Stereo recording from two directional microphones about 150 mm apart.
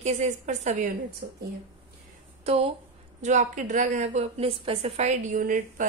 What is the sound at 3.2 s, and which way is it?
A woman's voice, 55° right (ahead or behind).